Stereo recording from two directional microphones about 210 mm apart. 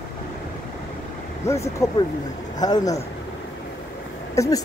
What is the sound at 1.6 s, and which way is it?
Speech, 15° left (ahead or behind).